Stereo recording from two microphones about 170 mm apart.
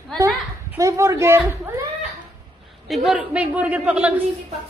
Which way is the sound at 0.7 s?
20° right (ahead or behind).